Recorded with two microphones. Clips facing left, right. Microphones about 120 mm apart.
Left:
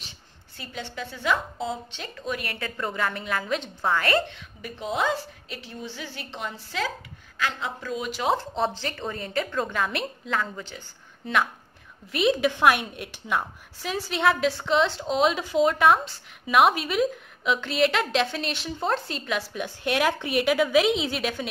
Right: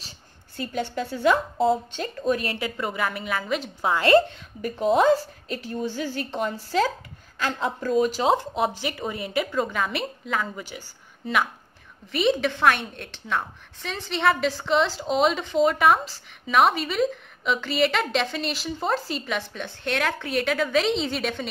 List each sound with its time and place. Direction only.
0.6 s a woman's voice: 45° right (ahead or behind)
2.4 s a woman's voice: 20° right (ahead or behind)
2.8 s a woman's voice: 5° right (ahead or behind)
3.9 s a woman's voice: 20° right (ahead or behind)
4.3 s a woman's voice: 45° right (ahead or behind)
8.2 s a woman's voice: 25° right (ahead or behind)
8.5 s a woman's voice: 10° right (ahead or behind)